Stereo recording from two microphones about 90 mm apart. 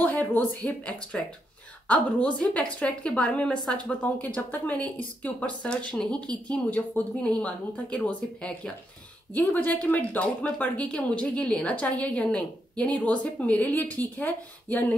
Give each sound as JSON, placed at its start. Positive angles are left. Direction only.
{"t": 0.0, "sound": "speech", "side_deg": 20}